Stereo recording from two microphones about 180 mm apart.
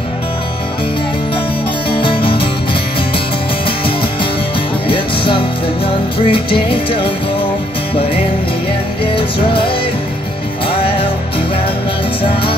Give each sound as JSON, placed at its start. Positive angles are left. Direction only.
{"t": 1.9, "sound": "music", "side_deg": 30}
{"t": 3.6, "sound": "music", "side_deg": 30}
{"t": 12.2, "sound": "music", "side_deg": 30}